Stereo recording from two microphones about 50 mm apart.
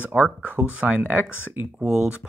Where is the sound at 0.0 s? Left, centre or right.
Right.